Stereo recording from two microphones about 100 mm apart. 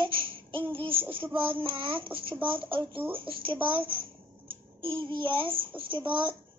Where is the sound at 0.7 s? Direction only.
60° right (ahead or behind).